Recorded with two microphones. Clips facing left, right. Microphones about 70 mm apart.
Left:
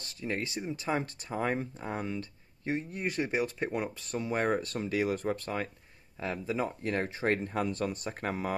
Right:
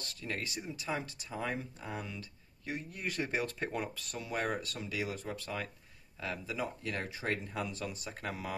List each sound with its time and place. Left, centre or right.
0.0 s speech: left
3.3 s speech: centre
4.0 s speech: left